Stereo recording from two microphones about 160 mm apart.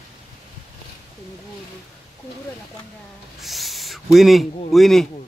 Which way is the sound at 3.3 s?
Centre (ahead or behind).